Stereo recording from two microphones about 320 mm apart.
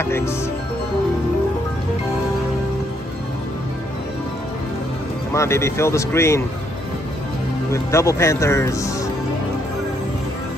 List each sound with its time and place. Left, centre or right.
0.0 s speech: centre
5.3 s speech: centre
7.7 s speech: centre